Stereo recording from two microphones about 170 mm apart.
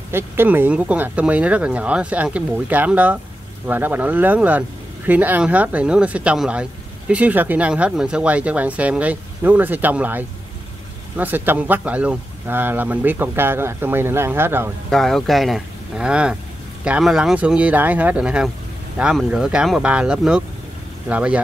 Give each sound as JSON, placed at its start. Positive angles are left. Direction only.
{"t": 0.1, "sound": "speech", "side_deg": -15}
{"t": 14.9, "sound": "speech", "side_deg": 5}